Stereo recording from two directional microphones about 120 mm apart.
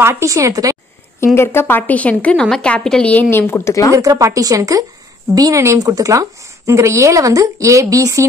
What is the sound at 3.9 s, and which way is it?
A woman's voice, 30° right (ahead or behind).